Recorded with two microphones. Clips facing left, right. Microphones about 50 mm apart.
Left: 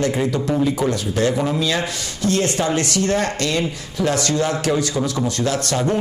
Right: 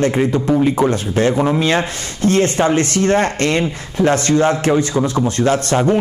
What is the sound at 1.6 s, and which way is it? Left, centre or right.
A man's voice, right.